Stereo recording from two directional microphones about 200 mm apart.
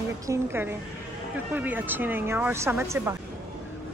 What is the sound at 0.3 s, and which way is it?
Speech, 10° right (ahead or behind).